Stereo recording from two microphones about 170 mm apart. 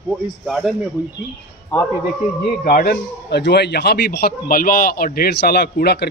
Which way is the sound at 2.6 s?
55° left (ahead or behind).